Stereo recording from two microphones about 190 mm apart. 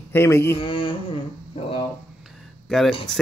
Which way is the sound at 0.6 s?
25° left (ahead or behind).